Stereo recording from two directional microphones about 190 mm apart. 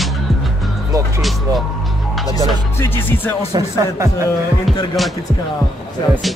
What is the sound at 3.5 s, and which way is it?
Speech, 15° right (ahead or behind).